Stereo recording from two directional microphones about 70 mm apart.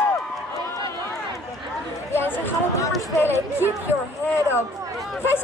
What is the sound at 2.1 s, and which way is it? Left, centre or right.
Chatter, left.